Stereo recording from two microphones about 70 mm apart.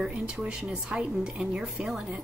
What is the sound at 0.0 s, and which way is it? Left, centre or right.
A woman's voice, centre.